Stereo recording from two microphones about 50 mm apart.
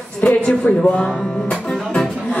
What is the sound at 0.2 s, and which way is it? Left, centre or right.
Speech, left.